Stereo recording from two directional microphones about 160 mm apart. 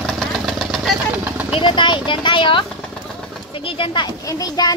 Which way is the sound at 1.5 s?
30° left (ahead or behind).